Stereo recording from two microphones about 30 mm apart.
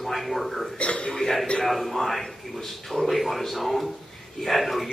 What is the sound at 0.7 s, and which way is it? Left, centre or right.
Speech, left.